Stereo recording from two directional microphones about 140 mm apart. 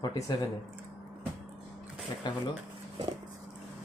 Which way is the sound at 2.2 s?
30° left (ahead or behind).